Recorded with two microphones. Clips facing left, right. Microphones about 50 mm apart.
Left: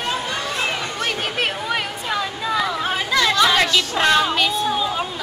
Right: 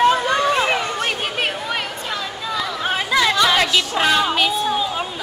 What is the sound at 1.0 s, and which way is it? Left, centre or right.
Chatter, centre.